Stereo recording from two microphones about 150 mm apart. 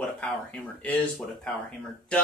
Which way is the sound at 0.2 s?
5° left (ahead or behind).